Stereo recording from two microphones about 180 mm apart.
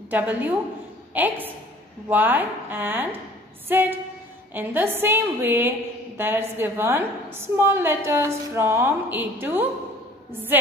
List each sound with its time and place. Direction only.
0.1 s a woman's voice: 10° right (ahead or behind)